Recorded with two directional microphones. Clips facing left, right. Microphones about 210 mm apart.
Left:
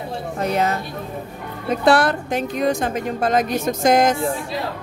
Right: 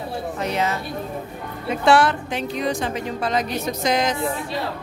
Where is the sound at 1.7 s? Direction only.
40° left (ahead or behind).